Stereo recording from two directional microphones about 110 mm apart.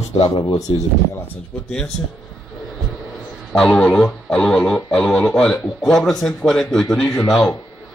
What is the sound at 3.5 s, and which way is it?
Speech, 10° left (ahead or behind).